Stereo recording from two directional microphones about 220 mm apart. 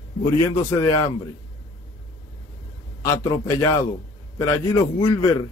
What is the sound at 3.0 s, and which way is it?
Speech, 15° left (ahead or behind).